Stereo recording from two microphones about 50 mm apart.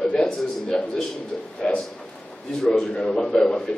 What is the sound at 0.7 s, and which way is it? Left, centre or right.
A man's voice, centre.